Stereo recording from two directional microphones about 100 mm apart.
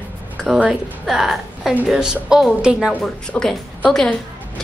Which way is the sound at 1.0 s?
Centre (ahead or behind).